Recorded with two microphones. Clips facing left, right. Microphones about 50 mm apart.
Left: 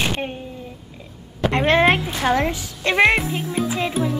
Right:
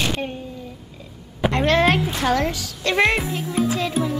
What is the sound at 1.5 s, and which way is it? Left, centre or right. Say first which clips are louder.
Speech: left 2 dB; left.